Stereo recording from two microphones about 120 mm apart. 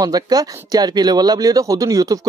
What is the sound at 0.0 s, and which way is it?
Speech, 30° right (ahead or behind).